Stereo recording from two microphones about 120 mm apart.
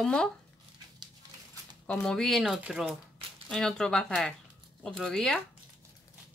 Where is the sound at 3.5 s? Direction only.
5° left (ahead or behind).